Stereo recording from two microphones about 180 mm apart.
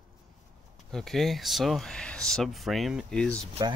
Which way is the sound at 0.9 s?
Centre (ahead or behind).